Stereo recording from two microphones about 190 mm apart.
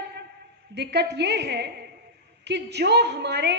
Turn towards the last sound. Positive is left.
turn(degrees=-60)  # may be behind; listen again after turning